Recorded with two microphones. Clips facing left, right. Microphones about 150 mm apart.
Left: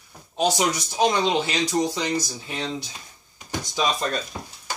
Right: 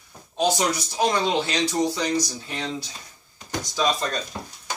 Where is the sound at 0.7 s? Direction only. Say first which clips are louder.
Left 1 dB; 20° left (ahead or behind).